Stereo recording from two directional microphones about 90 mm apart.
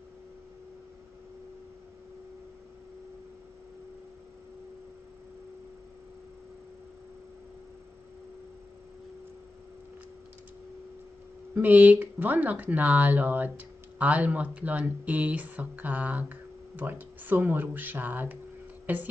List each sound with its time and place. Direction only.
11.5 s speech: 20° right (ahead or behind)